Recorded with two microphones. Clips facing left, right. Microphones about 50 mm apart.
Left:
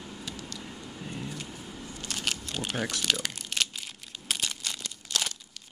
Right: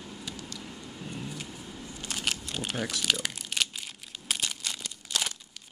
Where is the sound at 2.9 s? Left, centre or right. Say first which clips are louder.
Even; centre.